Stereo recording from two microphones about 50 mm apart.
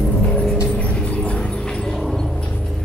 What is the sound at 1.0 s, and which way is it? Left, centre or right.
Dog, left.